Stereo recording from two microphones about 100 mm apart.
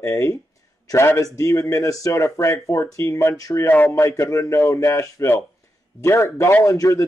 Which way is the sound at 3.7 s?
15° left (ahead or behind).